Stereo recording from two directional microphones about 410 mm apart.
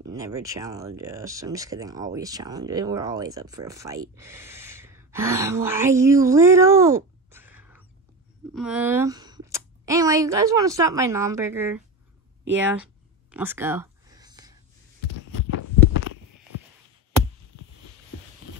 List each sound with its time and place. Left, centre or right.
0.0 s speech: centre
13.3 s a sound: centre
15.5 s heart sounds: left